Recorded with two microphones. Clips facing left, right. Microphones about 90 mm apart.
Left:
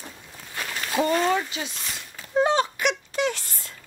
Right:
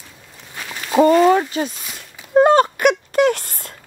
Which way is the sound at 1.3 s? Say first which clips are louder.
Right 9 dB; 45° right (ahead or behind).